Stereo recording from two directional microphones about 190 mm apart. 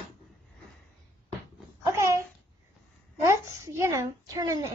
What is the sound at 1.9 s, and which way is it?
Babbling, 15° right (ahead or behind).